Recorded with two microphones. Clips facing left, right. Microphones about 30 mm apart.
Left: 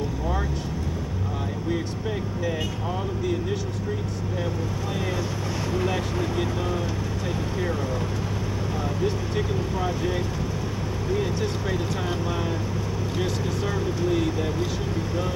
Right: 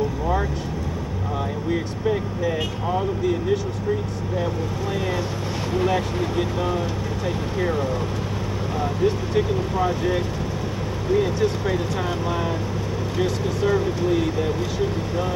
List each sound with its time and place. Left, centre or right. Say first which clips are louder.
1.7 s speech: right 6 dB; centre
5.7 s speech: right 5 dB; centre
9.0 s speech: right 7 dB; centre
11.3 s speech: right 5 dB; centre
13.2 s speech: right 6 dB; centre